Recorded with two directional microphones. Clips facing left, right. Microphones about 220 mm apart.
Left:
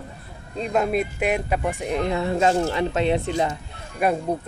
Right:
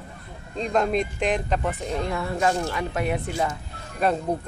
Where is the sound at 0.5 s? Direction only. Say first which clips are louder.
Left 1 dB; 5° left (ahead or behind); by 3.5 s 25° left (ahead or behind).